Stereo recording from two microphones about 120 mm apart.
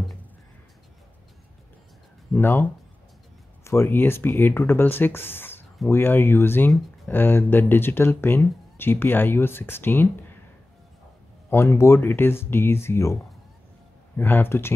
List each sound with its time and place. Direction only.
2.3 s speech: 15° left (ahead or behind)
11.5 s speech: 20° left (ahead or behind)